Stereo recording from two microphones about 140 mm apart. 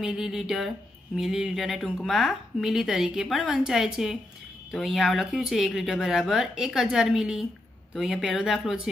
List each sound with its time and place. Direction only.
0.0 s speech: 5° right (ahead or behind)